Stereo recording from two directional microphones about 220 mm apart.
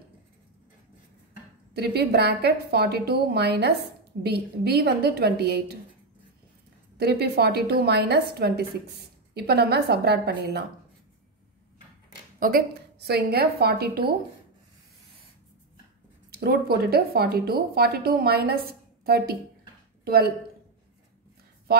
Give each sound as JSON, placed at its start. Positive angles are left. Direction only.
{"t": 1.8, "sound": "speech", "side_deg": -45}
{"t": 7.0, "sound": "speech", "side_deg": -45}
{"t": 12.4, "sound": "speech", "side_deg": -40}
{"t": 16.3, "sound": "speech", "side_deg": -45}